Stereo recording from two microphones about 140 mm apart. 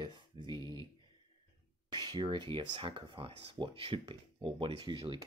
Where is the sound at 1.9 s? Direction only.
30° right (ahead or behind).